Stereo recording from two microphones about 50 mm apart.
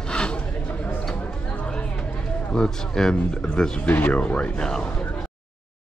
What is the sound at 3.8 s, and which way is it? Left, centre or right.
Speech, left.